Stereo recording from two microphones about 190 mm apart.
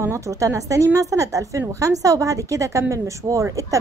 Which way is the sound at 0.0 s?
15° right (ahead or behind).